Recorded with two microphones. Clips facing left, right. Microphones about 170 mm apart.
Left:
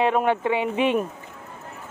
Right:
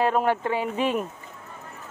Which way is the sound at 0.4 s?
Centre (ahead or behind).